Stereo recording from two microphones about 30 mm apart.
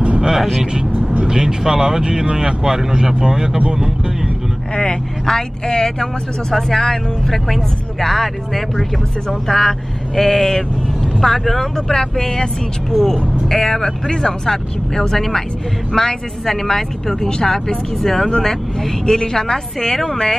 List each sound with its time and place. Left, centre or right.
1.2 s speech: right
5.2 s speech: centre
12.9 s speech: centre
17.3 s speech: left
18.0 s speech: centre